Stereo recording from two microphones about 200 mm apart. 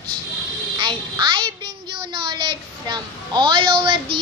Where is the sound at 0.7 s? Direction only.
20° right (ahead or behind).